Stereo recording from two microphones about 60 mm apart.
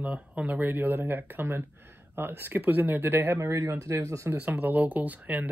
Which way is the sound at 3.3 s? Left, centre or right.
Right.